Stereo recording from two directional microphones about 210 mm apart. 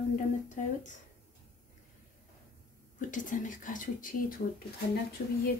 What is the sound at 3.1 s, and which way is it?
Speech, 40° left (ahead or behind).